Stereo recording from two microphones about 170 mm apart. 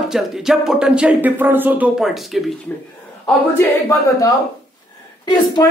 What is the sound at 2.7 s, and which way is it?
Speech, 10° left (ahead or behind).